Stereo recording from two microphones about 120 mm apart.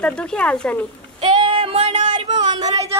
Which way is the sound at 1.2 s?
45° right (ahead or behind).